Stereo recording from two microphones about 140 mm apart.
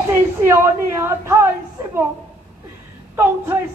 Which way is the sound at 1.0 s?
20° right (ahead or behind).